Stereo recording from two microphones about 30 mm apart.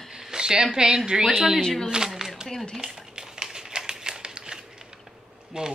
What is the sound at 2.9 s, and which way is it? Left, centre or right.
Typewriter, right.